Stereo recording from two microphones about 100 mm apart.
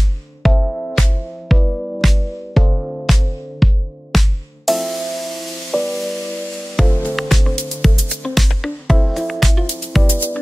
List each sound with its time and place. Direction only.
0.4 s music: centre (ahead or behind)
6.9 s music: 15° left (ahead or behind)
7.2 s music: centre (ahead or behind)
10.0 s music: 15° left (ahead or behind)